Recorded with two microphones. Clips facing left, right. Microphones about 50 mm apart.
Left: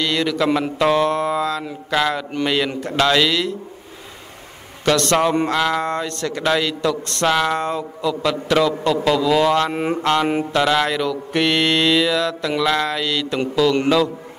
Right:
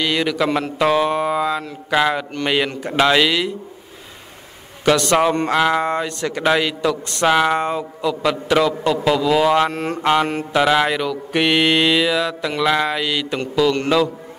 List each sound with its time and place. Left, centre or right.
0.0 s mantra: centre
4.8 s mantra: centre
9.7 s a sound: centre
10.5 s mantra: centre